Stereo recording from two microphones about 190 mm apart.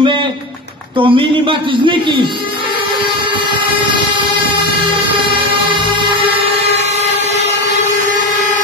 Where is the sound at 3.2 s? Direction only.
25° right (ahead or behind).